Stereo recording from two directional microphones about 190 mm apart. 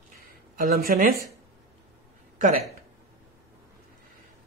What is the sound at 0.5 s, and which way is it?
Speech, 50° right (ahead or behind).